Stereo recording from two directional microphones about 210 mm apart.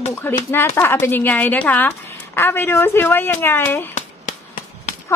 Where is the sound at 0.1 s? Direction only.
10° left (ahead or behind).